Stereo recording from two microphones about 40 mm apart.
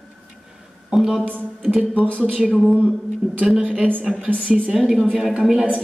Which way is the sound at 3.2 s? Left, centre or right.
Centre.